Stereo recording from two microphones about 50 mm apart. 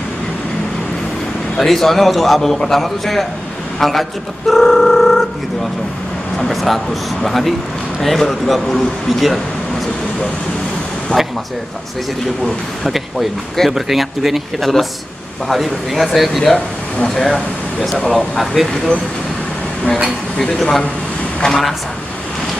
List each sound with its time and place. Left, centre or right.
1.6 s speech: centre
6.3 s speech: centre
11.1 s a sound: left
12.8 s speech: centre
20.3 s speech: centre